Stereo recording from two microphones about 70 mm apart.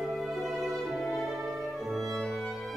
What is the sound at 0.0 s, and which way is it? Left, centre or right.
Music, centre.